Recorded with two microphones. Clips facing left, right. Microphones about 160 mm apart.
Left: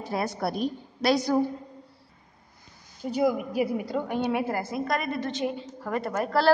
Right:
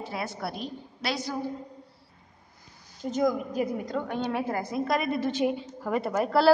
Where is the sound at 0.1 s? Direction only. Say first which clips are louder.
Left 8 dB; 40° left (ahead or behind).